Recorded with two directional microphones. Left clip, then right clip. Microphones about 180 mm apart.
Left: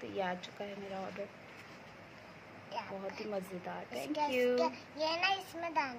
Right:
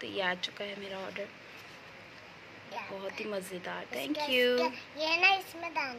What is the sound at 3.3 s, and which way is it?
Speech, 5° right (ahead or behind).